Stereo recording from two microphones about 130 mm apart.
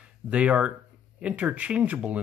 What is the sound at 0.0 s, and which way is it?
Speech, 10° right (ahead or behind).